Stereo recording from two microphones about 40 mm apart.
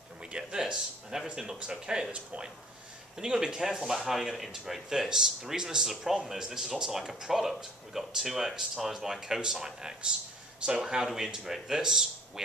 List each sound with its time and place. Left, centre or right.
0.2 s speech: centre
2.1 s speech: right
3.2 s speech: centre